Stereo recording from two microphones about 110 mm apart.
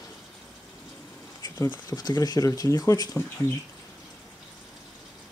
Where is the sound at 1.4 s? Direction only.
25° left (ahead or behind).